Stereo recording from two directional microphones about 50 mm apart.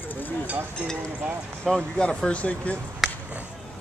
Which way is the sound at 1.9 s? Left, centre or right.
Centre.